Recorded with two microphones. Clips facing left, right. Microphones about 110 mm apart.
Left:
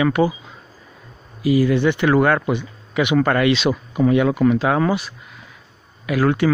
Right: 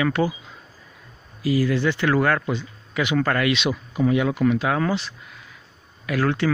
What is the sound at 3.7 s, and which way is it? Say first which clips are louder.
Speech: left 4 dB; 60° left (ahead or behind).